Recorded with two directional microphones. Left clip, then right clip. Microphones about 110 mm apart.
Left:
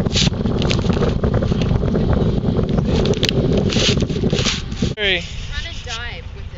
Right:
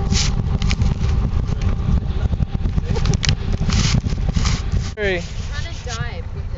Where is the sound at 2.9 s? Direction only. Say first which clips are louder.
Left 5 dB; 5° left (ahead or behind).